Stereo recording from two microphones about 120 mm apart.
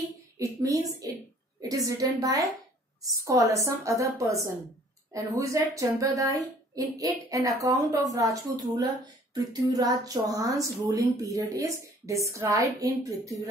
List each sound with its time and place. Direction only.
0.4 s a woman's voice: 25° right (ahead or behind)